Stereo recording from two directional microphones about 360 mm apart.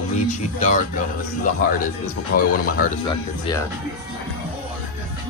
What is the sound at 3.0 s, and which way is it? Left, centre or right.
Speech, centre.